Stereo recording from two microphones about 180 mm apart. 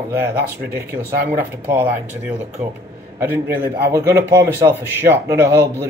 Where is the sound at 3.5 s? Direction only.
10° right (ahead or behind).